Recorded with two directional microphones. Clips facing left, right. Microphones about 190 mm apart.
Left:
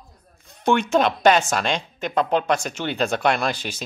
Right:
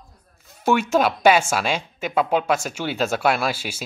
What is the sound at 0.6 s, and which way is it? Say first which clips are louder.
Speech: even; 5° right (ahead or behind).